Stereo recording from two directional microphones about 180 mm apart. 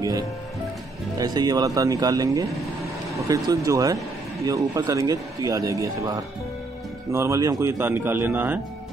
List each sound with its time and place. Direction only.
1.1 s a man's voice: 20° right (ahead or behind)